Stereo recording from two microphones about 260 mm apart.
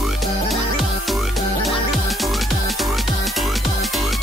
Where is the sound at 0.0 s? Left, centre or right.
Centre.